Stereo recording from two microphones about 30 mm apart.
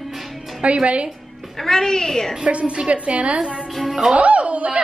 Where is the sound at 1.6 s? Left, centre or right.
Centre.